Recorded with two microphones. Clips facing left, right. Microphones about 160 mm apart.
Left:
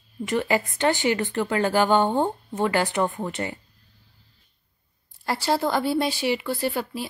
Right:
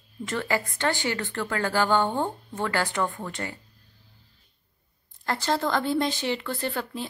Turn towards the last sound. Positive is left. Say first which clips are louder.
# left 3 dB
turn(degrees=10)  # may be behind; listen again after turning